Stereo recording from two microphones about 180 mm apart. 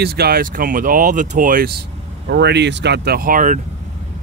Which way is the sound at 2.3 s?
65° right (ahead or behind).